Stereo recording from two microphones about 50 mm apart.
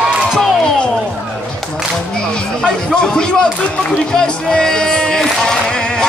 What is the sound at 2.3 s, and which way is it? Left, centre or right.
Music, centre.